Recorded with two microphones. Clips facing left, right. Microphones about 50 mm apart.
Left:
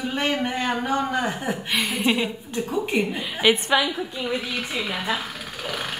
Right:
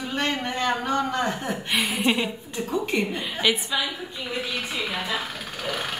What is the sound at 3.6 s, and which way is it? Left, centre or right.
Speech, left.